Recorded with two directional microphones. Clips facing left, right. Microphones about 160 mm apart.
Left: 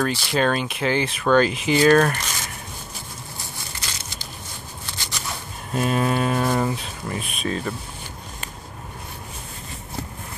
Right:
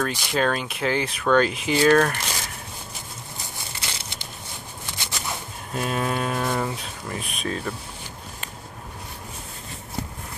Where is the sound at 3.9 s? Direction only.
25° right (ahead or behind).